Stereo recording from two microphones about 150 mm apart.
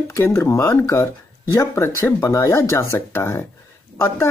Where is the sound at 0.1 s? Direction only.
15° left (ahead or behind).